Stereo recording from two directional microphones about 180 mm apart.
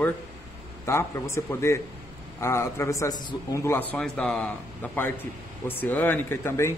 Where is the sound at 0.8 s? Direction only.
15° left (ahead or behind).